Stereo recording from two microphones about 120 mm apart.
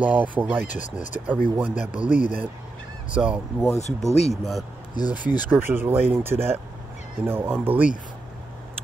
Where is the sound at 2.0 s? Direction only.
90° left.